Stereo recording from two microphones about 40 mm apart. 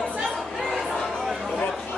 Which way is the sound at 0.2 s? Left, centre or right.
Centre.